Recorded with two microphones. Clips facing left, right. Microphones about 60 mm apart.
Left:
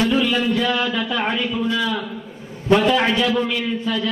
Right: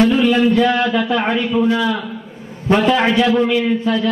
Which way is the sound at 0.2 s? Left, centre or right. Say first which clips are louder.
Right 6 dB; right.